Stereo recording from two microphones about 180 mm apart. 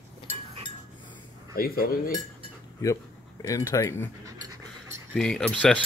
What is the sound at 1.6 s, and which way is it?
Cutlery, 55° left (ahead or behind).